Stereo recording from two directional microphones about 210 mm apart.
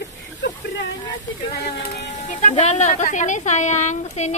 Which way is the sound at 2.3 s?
35° left (ahead or behind).